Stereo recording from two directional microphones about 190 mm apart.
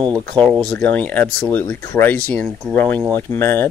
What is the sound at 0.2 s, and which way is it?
Speech, 5° left (ahead or behind).